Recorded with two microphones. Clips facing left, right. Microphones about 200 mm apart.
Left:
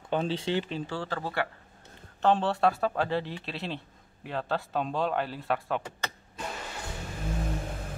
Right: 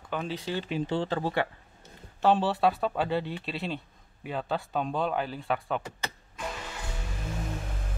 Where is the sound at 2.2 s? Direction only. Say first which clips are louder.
Right 1 dB; 5° right (ahead or behind).